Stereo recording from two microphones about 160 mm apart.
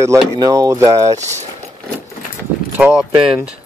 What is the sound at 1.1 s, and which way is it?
Speech, 45° right (ahead or behind).